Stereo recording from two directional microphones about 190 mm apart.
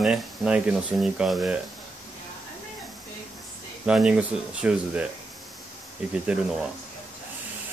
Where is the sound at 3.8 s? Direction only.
5° right (ahead or behind).